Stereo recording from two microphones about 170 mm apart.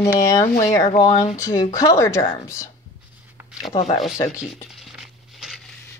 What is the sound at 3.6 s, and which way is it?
Speech, 40° left (ahead or behind).